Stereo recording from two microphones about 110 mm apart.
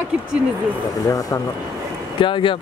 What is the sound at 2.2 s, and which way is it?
Speech, 50° left (ahead or behind).